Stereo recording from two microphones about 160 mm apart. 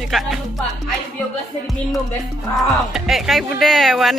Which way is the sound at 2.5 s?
Centre (ahead or behind).